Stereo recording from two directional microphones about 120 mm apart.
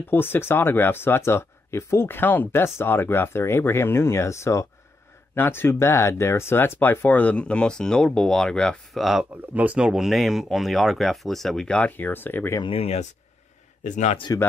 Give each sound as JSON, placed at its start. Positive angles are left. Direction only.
{"t": 0.1, "sound": "speech", "side_deg": 20}
{"t": 12.5, "sound": "speech", "side_deg": 50}
{"t": 13.8, "sound": "a man's voice", "side_deg": 90}